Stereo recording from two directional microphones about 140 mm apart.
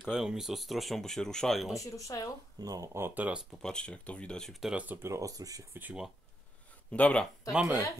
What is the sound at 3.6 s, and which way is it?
Speech, 5° left (ahead or behind).